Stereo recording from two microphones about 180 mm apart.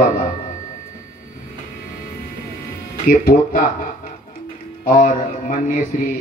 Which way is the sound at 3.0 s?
50° left (ahead or behind).